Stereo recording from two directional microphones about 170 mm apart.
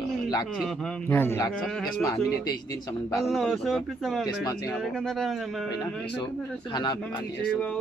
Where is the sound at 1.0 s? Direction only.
15° left (ahead or behind).